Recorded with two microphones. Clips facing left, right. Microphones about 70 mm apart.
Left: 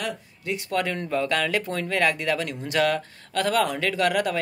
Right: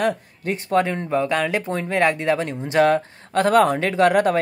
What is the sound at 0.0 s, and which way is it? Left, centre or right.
Speech, right.